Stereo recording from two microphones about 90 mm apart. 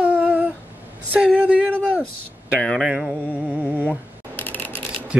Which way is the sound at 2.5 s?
5° left (ahead or behind).